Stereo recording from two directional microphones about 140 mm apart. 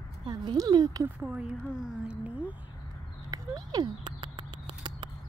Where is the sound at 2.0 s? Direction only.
10° right (ahead or behind).